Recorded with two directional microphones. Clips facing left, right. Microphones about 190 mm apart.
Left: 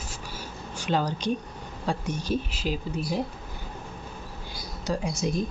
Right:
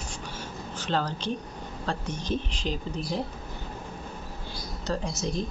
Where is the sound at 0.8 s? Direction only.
10° left (ahead or behind).